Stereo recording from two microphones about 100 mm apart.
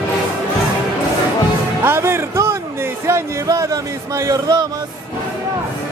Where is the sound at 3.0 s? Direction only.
30° right (ahead or behind).